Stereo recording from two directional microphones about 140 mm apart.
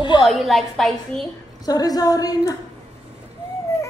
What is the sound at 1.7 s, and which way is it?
Speech, 30° left (ahead or behind).